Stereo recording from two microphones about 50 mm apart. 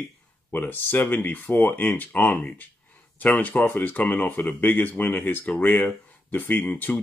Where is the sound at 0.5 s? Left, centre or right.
Left.